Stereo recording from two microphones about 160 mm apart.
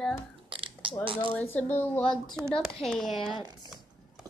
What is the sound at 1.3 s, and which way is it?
A woman's voice, 10° left (ahead or behind).